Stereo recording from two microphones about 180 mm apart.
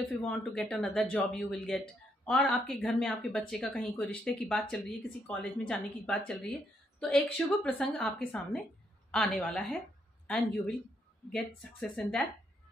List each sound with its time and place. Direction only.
0.1 s a woman's voice: 5° left (ahead or behind)
11.8 s a woman's voice: 5° left (ahead or behind)